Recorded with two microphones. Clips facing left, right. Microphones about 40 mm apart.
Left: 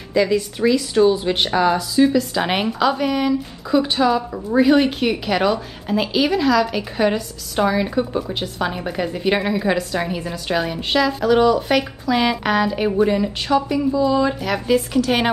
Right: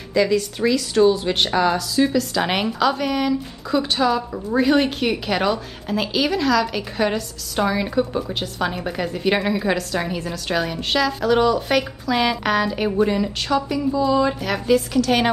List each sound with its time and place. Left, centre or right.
0.1 s a woman's voice: centre
13.5 s a woman's voice: centre
13.9 s a woman's voice: centre
14.9 s a woman's voice: centre